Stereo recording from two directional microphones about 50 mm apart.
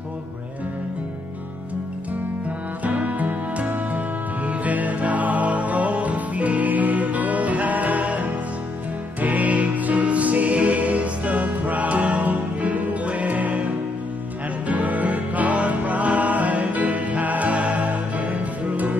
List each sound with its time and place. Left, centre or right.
2.8 s music: right